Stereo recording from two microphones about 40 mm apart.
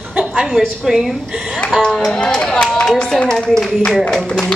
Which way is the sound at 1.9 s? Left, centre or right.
Centre.